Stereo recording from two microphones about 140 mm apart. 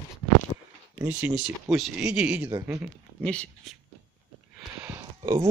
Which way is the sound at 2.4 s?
20° right (ahead or behind).